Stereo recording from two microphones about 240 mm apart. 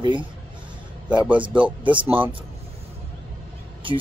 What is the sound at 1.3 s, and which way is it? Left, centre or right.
Speech, centre.